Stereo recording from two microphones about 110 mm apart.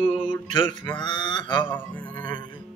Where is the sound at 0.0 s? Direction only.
55° left (ahead or behind).